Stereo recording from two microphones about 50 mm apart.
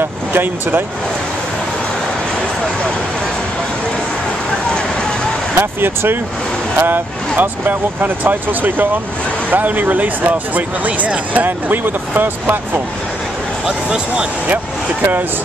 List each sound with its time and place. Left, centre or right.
0.3 s speech: right
5.6 s speech: right
13.7 s speech: centre